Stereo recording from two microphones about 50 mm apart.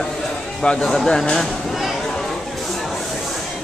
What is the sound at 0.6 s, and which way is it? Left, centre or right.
Speech, centre.